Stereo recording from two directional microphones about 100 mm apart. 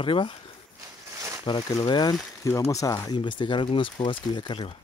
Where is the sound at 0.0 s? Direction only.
60° left (ahead or behind).